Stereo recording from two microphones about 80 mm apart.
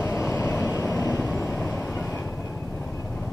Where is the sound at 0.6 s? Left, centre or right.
Left.